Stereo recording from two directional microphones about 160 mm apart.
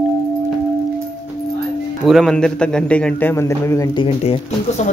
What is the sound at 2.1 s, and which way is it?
A man's voice, centre (ahead or behind).